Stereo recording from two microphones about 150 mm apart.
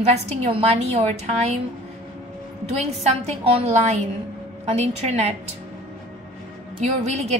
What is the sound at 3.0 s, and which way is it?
A woman's voice, 45° right (ahead or behind).